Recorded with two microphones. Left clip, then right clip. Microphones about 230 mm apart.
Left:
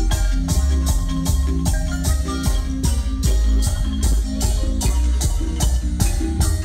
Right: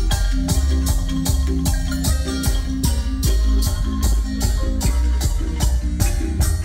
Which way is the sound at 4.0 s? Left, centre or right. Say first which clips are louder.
Left 1 dB; right.